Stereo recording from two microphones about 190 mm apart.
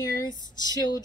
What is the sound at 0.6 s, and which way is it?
Speech, 20° left (ahead or behind).